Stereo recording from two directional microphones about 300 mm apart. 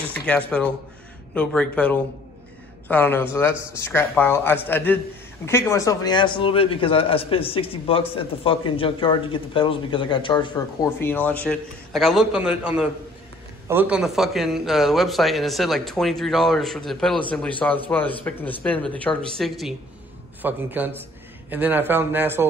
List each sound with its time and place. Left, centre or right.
0.4 s a man's voice: centre